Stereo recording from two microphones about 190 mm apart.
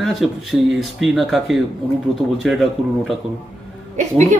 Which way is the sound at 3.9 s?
40° right (ahead or behind).